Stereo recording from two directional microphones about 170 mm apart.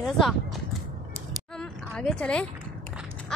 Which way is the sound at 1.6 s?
5° left (ahead or behind).